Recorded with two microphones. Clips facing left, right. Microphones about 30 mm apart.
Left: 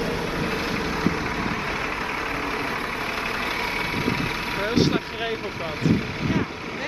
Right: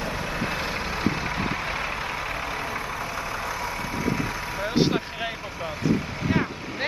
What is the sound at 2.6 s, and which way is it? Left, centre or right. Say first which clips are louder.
Vehicle: left 3 dB; left.